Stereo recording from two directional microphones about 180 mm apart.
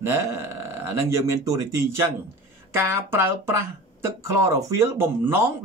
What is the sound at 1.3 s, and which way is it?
Speech, 15° right (ahead or behind).